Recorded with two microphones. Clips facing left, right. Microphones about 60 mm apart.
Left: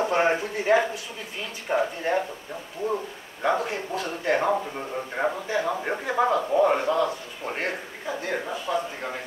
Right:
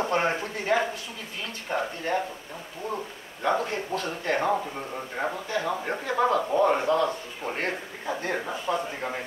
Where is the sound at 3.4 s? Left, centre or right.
Centre.